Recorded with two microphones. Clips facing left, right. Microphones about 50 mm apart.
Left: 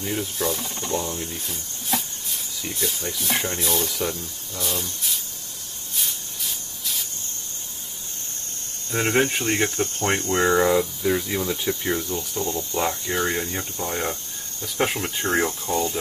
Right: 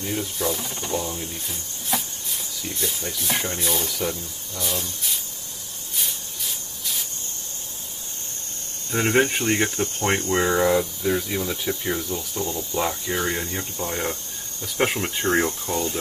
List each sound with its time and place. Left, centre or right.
0.0 s speech: centre
5.9 s rub: centre
9.0 s speech: centre